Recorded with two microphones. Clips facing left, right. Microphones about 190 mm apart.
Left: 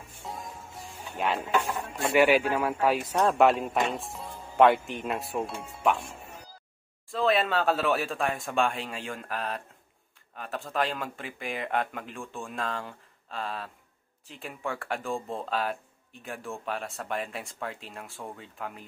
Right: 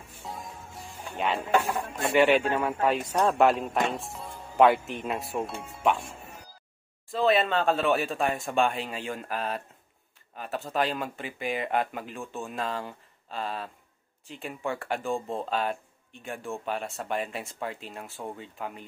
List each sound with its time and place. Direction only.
0.2 s music: centre (ahead or behind)
2.1 s speech: 5° left (ahead or behind)
7.1 s speech: centre (ahead or behind)